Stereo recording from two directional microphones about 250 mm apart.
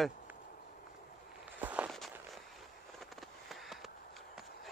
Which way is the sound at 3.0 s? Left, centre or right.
Centre.